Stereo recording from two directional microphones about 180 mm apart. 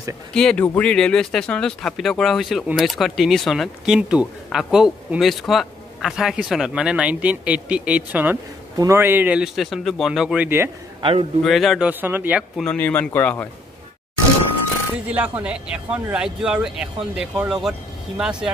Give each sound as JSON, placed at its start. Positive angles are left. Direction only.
{"t": 0.3, "sound": "a man's voice", "side_deg": 5}
{"t": 11.0, "sound": "a man's voice", "side_deg": -30}
{"t": 11.4, "sound": "a man's voice", "side_deg": 0}
{"t": 12.6, "sound": "speech", "side_deg": 10}
{"t": 15.0, "sound": "speech", "side_deg": -10}